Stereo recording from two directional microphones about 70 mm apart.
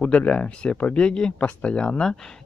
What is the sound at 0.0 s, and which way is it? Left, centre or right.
Speech, centre.